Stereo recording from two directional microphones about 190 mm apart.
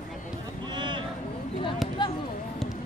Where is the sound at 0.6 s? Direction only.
25° right (ahead or behind).